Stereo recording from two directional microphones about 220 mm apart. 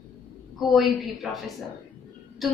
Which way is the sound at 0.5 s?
Centre (ahead or behind).